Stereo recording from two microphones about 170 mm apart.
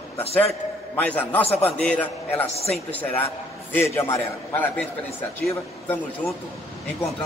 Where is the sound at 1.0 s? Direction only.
10° left (ahead or behind).